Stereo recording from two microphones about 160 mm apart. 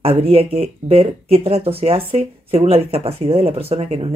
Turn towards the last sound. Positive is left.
turn(degrees=-40)  # may be behind; listen again after turning